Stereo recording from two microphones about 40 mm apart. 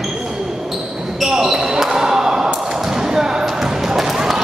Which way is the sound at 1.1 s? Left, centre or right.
Centre.